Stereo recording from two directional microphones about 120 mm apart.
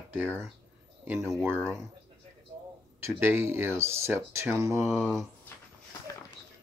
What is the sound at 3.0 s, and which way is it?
Speech, 20° right (ahead or behind).